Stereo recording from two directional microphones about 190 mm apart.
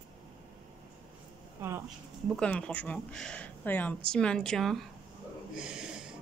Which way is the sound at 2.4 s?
5° left (ahead or behind).